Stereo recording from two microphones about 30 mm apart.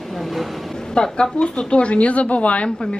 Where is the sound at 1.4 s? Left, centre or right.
Left.